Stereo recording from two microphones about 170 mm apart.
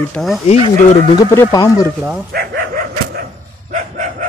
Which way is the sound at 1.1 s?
20° left (ahead or behind).